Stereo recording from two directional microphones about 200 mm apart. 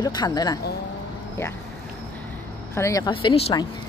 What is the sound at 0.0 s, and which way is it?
Speech, 20° left (ahead or behind).